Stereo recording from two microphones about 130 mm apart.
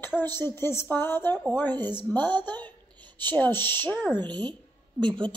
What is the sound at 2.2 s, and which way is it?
Speech, 35° right (ahead or behind).